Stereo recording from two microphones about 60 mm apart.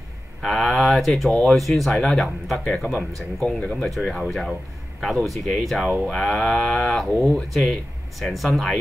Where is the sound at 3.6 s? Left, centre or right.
Centre.